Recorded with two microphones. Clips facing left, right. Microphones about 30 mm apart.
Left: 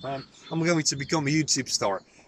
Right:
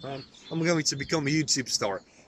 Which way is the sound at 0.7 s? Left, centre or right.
Centre.